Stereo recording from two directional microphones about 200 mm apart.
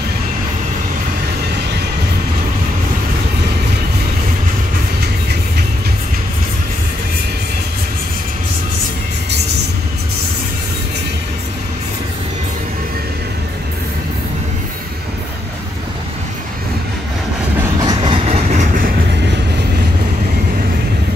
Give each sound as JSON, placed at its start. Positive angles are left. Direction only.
{"t": 17.8, "sound": "train", "side_deg": -25}